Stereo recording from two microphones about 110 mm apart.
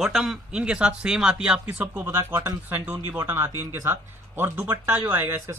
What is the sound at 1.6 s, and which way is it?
Speech, 15° right (ahead or behind).